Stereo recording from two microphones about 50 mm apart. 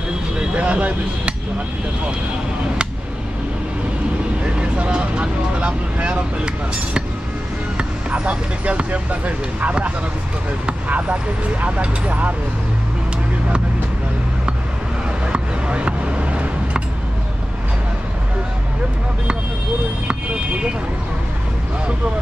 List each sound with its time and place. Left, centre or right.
0.6 s speech: right
4.5 s speech: right
8.1 s speech: right
15.2 s a sound: right